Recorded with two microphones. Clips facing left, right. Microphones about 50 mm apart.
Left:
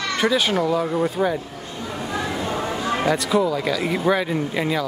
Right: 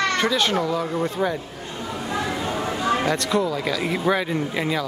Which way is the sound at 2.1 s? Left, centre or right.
Centre.